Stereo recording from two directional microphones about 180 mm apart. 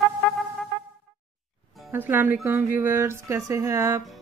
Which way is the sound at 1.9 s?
10° right (ahead or behind).